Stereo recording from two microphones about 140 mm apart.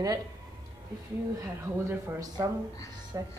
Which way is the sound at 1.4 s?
20° right (ahead or behind).